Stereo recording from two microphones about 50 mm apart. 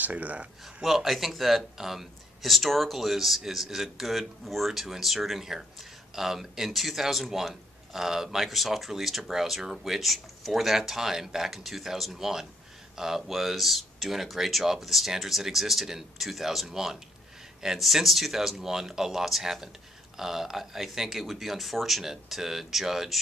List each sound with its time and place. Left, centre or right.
0.0 s speech: right
0.8 s speech: centre